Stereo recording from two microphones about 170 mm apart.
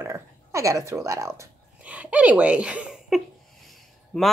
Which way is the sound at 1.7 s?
10° right (ahead or behind).